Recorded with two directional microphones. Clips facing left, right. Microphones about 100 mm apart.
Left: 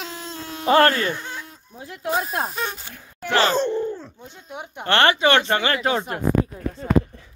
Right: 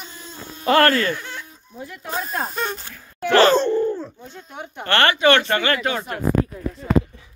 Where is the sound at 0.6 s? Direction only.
15° left (ahead or behind).